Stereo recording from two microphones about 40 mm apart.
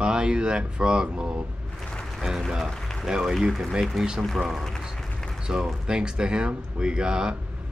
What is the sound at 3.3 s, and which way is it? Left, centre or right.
Speech, centre.